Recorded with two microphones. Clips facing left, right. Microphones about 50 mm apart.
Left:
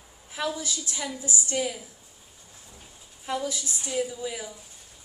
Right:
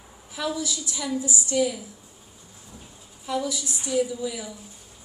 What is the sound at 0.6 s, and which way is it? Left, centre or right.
A woman's voice, left.